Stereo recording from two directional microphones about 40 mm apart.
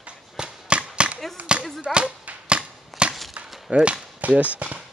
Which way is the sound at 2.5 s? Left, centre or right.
Right.